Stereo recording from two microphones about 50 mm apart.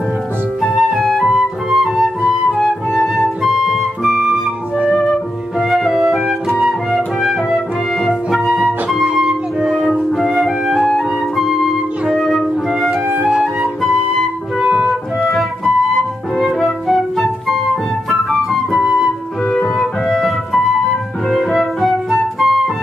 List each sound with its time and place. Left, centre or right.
0.6 s flute: centre
3.0 s music: centre
4.9 s music: centre
5.6 s music: centre
9.2 s flute: centre
9.7 s music: centre
12.1 s flute: centre
13.4 s music: centre
14.6 s music: centre
14.9 s music: centre
18.3 s flute: centre
19.8 s music: centre